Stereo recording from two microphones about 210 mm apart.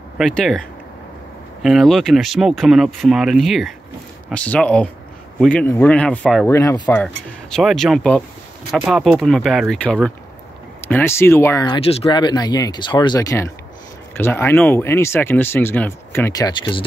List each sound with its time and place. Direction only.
0.2 s speech: centre (ahead or behind); by 16.8 s 20° left (ahead or behind)